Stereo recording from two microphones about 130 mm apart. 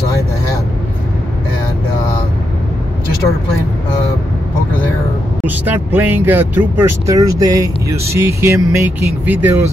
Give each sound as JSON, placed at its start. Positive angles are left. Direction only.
{"t": 5.7, "sound": "speech", "side_deg": -15}